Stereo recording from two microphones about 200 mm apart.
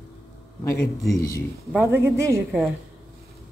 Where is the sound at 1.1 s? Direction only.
15° left (ahead or behind).